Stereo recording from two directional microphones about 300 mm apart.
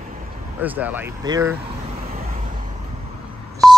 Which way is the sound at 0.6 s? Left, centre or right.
Centre.